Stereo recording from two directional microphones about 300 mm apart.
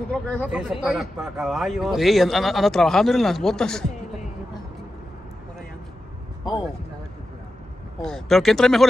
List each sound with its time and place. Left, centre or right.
0.1 s speech: centre
8.0 s speech: centre